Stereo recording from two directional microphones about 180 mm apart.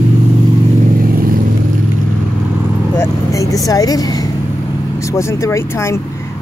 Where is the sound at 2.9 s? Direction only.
15° left (ahead or behind).